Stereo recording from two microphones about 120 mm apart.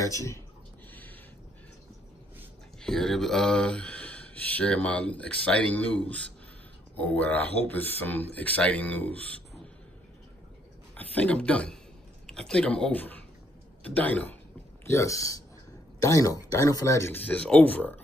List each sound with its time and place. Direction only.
0.0 s speech: 25° left (ahead or behind)
2.8 s speech: 5° left (ahead or behind)
11.0 s speech: 10° left (ahead or behind)
14.9 s speech: 25° left (ahead or behind)